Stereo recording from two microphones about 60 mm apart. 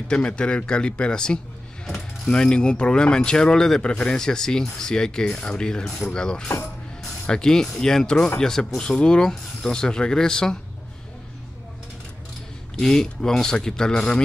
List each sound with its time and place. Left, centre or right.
0.1 s speech: centre
1.9 s mechanisms: centre
2.3 s speech: centre
7.0 s mechanisms: centre
8.4 s speech: centre
12.7 s speech: centre